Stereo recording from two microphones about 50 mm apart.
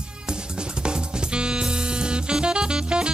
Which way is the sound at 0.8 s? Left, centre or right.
Centre.